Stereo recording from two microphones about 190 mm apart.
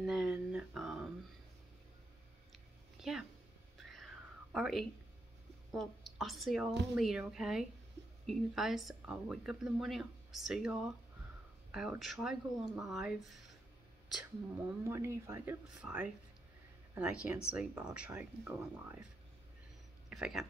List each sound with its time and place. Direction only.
0.0 s a sound: centre (ahead or behind)
3.0 s speech: 5° right (ahead or behind)
4.5 s a woman's voice: centre (ahead or behind)
14.9 s speech: 15° right (ahead or behind)
20.1 s speech: 5° right (ahead or behind)